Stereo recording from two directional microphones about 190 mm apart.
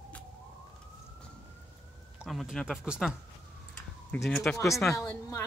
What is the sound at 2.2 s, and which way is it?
Speech, centre (ahead or behind).